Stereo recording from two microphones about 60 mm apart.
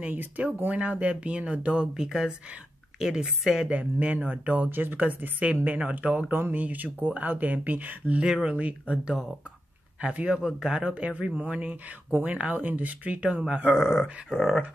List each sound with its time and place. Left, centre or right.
0.0 s speech: right; by 3.6 s centre
3.6 s speech: right
6.3 s speech: right
8.2 s speech: centre
10.9 s speech: right; by 14.6 s centre